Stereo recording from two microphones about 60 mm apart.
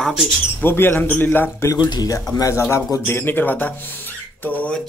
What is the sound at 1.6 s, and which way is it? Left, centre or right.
Speech, left.